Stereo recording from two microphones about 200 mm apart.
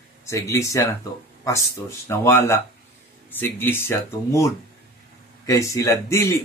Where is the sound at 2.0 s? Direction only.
10° left (ahead or behind).